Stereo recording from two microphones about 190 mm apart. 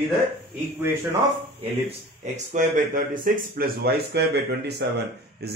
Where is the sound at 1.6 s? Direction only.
35° right (ahead or behind).